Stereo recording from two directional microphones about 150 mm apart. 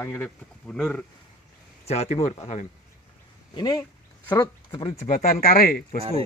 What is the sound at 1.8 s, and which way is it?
Speech, 45° left (ahead or behind).